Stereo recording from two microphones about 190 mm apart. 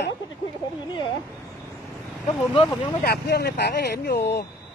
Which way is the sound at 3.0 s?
55° left (ahead or behind).